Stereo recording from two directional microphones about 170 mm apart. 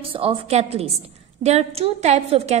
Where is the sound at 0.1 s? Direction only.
35° right (ahead or behind).